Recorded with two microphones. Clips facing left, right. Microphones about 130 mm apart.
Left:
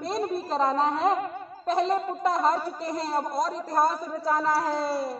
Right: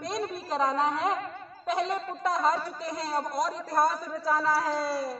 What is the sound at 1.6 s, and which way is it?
Speech, 35° left (ahead or behind).